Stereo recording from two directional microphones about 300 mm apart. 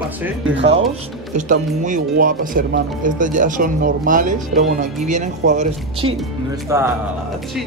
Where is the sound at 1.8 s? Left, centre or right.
Right.